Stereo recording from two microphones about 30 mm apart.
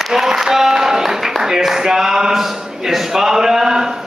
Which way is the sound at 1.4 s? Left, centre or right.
Centre.